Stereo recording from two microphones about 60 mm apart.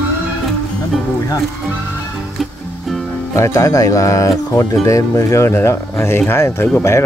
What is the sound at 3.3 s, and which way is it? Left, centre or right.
Speech, left.